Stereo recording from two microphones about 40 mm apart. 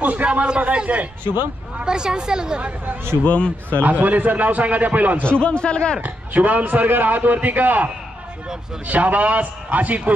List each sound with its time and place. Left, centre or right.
0.0 s a sound: right
0.3 s a man's voice: right
1.2 s speech: right
1.9 s a woman's voice: centre
3.3 s a man's voice: left
3.8 s a man's voice: right
5.2 s a man's voice: left
5.9 s a man's voice: right